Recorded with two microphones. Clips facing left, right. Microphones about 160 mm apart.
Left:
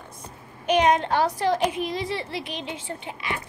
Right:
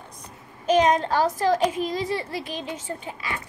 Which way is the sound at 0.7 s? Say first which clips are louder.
Right 1 dB; 40° right (ahead or behind).